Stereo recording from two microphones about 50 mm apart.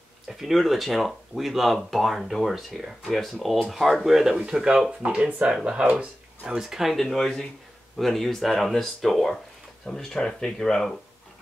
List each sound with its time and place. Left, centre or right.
0.3 s speech: centre